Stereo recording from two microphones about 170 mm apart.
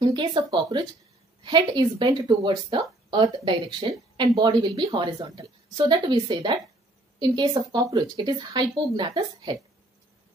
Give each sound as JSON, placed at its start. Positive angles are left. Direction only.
{"t": 0.0, "sound": "speech", "side_deg": -25}